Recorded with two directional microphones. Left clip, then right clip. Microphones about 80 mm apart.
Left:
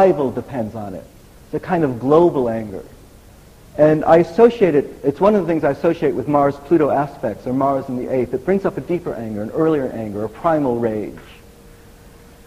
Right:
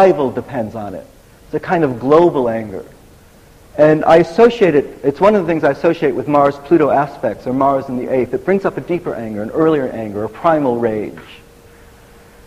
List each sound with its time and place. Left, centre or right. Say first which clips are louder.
0.0 s a man's voice: right 3 dB; left